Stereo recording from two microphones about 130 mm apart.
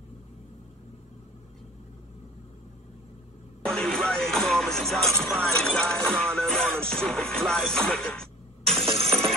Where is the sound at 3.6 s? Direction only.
5° left (ahead or behind).